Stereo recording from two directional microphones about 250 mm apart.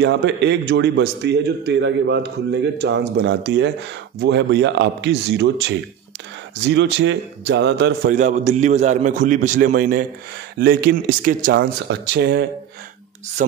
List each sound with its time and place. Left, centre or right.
0.0 s a man's voice: right
8.1 s a man's voice: right
13.4 s speech: right